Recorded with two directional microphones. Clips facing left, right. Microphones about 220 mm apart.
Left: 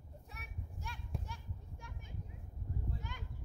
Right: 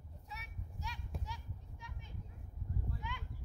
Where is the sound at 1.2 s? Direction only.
50° left (ahead or behind).